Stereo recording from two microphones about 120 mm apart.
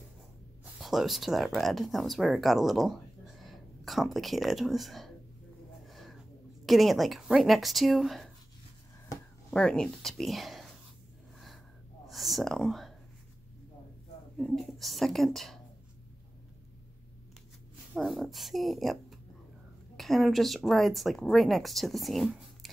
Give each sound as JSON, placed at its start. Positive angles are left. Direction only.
{"t": 0.7, "sound": "speech", "side_deg": 0}
{"t": 5.9, "sound": "a sound", "side_deg": 0}
{"t": 6.6, "sound": "speech", "side_deg": 0}
{"t": 9.5, "sound": "speech", "side_deg": 5}
{"t": 12.1, "sound": "speech", "side_deg": 0}
{"t": 14.3, "sound": "speech", "side_deg": 5}
{"t": 17.9, "sound": "speech", "side_deg": 0}